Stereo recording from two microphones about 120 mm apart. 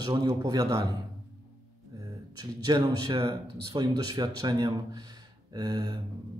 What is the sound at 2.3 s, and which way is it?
Speech, 35° right (ahead or behind).